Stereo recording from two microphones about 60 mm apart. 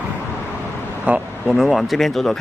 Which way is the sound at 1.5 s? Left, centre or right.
Centre.